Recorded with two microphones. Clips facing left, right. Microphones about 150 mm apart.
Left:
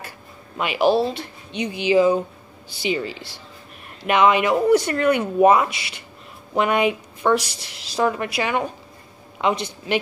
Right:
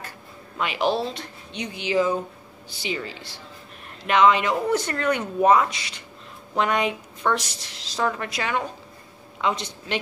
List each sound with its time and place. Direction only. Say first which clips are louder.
0.6 s a woman's voice: left 5 dB; 10° left (ahead or behind)